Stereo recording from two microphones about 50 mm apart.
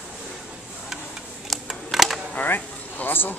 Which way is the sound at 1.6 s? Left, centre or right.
Centre.